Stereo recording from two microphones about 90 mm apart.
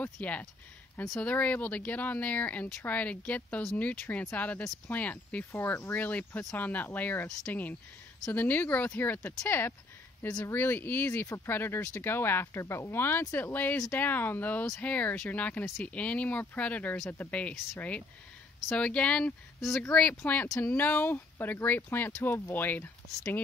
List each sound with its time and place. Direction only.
0.0 s speech: 15° left (ahead or behind)